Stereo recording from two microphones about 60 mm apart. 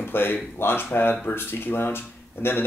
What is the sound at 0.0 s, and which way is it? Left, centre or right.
A man's voice, left.